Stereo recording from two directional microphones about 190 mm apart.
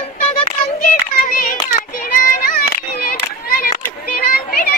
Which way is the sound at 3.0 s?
50° left (ahead or behind).